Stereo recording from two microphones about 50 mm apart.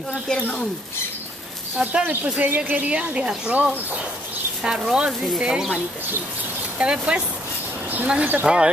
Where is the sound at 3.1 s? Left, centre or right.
Centre.